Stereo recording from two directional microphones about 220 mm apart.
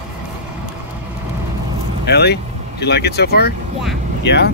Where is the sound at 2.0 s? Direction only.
50° left (ahead or behind).